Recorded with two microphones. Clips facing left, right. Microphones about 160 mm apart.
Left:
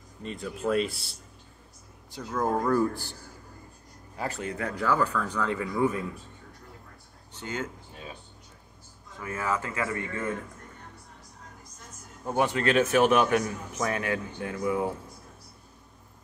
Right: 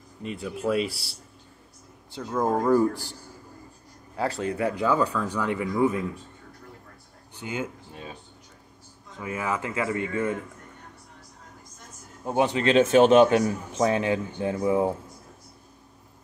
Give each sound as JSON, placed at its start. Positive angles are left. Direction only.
{"t": 0.4, "sound": "speech", "side_deg": -5}
{"t": 2.3, "sound": "speech", "side_deg": -10}
{"t": 4.4, "sound": "speech", "side_deg": -20}
{"t": 7.3, "sound": "speech", "side_deg": -10}
{"t": 9.2, "sound": "a man's voice", "side_deg": -15}
{"t": 12.3, "sound": "a man's voice", "side_deg": -20}